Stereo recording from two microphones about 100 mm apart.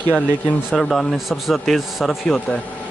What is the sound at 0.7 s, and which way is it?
A man's voice, centre (ahead or behind).